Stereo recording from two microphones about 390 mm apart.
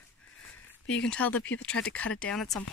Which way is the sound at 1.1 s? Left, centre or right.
Centre.